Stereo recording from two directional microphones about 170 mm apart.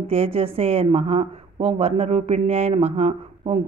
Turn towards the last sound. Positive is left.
turn(degrees=-40)  # may be behind; listen again after turning